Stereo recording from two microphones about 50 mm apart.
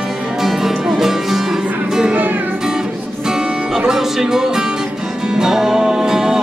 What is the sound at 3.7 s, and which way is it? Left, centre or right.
Music, centre.